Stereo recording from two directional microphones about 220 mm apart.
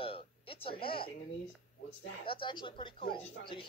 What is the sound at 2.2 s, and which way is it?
Speech, 25° left (ahead or behind).